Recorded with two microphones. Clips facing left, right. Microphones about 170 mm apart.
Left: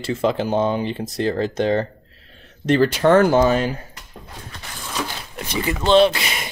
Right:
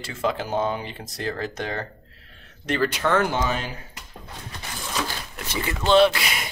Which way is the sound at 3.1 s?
40° left (ahead or behind).